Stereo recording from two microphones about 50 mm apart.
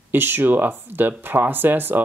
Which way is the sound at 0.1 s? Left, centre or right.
Right.